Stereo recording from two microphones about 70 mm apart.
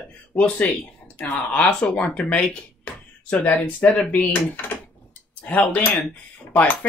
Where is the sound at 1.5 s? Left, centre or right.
Centre.